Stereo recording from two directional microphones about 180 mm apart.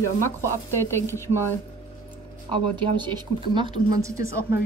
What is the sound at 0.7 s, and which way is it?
Speech, 15° left (ahead or behind).